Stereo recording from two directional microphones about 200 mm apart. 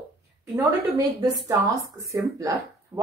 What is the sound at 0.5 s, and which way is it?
A woman's voice, 20° right (ahead or behind).